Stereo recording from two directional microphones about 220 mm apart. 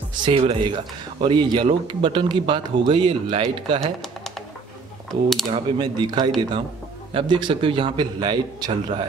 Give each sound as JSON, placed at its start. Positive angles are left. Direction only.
{"t": 0.1, "sound": "speech", "side_deg": -25}
{"t": 5.5, "sound": "speech", "side_deg": -20}